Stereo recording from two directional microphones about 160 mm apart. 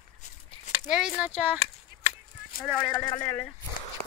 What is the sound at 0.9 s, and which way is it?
Speech, 5° right (ahead or behind).